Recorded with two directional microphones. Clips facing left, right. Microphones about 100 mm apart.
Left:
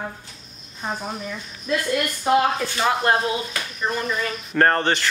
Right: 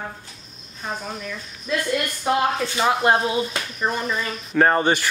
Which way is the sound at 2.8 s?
15° right (ahead or behind).